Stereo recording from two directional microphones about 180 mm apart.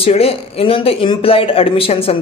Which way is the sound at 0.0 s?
30° left (ahead or behind).